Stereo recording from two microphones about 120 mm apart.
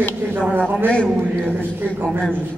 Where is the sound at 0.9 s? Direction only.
10° left (ahead or behind).